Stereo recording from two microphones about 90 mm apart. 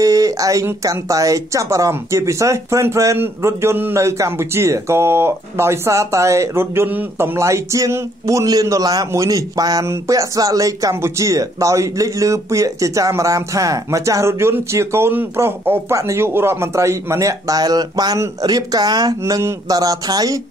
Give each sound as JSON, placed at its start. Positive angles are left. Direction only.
{"t": 0.0, "sound": "speech", "side_deg": -40}